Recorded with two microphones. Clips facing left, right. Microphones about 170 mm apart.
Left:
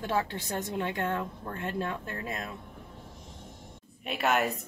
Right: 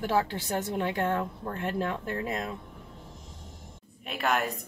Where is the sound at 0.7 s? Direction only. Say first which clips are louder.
Right 2 dB; 20° right (ahead or behind).